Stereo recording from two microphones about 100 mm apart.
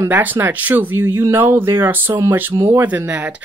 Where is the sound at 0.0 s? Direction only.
20° right (ahead or behind).